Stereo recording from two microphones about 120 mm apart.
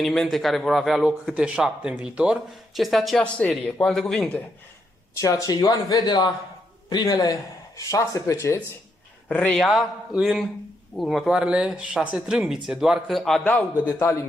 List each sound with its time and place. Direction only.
0.0 s a man's voice: centre (ahead or behind)
5.2 s speech: 30° left (ahead or behind)
9.3 s a man's voice: 10° left (ahead or behind)
9.7 s a man's voice: centre (ahead or behind)
13.5 s a man's voice: 15° left (ahead or behind)